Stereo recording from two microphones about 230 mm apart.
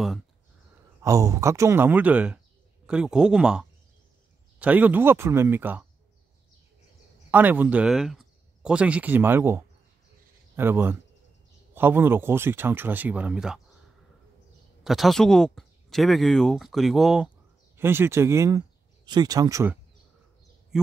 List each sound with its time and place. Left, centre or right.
1.0 s speech: centre
7.2 s speech: centre
14.8 s speech: centre